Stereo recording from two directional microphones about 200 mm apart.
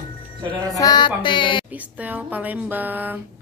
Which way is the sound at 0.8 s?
20° left (ahead or behind).